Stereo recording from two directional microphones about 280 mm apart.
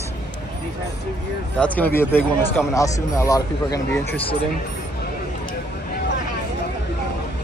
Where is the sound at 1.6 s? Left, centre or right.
Centre.